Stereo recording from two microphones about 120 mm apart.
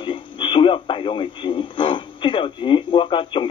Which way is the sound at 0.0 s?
45° left (ahead or behind).